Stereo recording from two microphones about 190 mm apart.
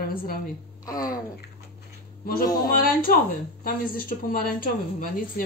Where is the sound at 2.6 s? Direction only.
50° left (ahead or behind).